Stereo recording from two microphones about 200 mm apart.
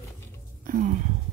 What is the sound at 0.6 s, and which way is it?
Speech, 40° right (ahead or behind).